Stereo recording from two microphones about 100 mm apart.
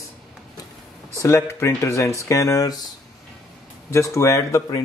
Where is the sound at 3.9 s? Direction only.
30° left (ahead or behind).